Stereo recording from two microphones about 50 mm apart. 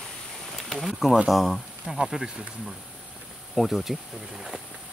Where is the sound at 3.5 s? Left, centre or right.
Centre.